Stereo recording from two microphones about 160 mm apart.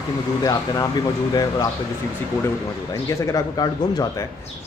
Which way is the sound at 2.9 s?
25° left (ahead or behind).